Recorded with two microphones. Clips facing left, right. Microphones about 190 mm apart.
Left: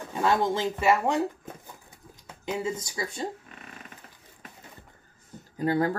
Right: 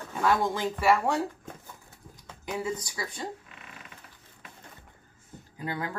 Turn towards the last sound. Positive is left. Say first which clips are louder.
# left 9 dB
turn(degrees=40)  # may be behind; listen again after turning